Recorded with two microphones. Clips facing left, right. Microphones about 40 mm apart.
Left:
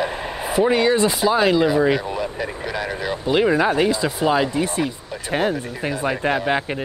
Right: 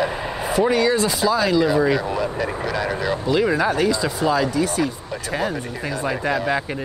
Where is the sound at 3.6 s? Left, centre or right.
Left.